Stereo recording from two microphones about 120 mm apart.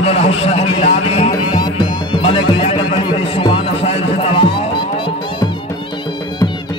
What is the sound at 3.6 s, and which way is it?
Music, 60° left (ahead or behind).